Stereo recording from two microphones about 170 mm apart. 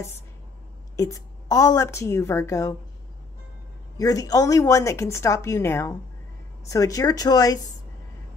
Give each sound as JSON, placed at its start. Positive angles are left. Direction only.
{"t": 0.9, "sound": "a woman's voice", "side_deg": 20}
{"t": 4.0, "sound": "a woman's voice", "side_deg": 20}